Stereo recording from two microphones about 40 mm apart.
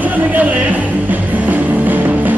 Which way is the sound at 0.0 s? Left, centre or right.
Right.